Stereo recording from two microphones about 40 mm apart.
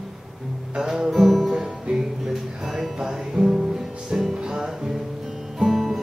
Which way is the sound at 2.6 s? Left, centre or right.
Centre.